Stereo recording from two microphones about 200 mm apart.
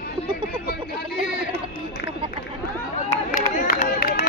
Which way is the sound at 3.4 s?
40° left (ahead or behind).